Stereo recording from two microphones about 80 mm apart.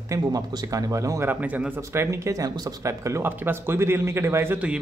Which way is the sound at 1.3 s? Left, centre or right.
Centre.